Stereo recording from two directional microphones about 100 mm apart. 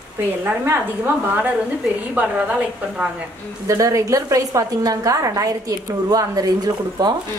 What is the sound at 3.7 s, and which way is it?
A woman's voice, 35° right (ahead or behind).